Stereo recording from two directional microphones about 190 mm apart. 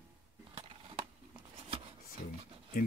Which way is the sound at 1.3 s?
30° right (ahead or behind).